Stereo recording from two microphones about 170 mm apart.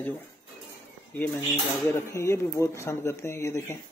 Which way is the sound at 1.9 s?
15° left (ahead or behind).